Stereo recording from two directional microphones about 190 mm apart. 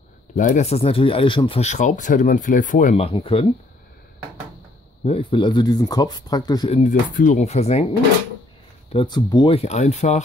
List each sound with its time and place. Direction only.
0.4 s speech: 40° left (ahead or behind)
5.0 s speech: 30° left (ahead or behind)
6.8 s speech: 40° left (ahead or behind)
8.9 s speech: 25° left (ahead or behind)